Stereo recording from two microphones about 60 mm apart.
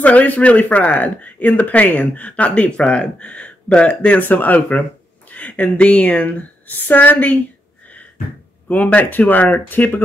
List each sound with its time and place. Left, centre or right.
0.0 s speech: left
8.6 s speech: left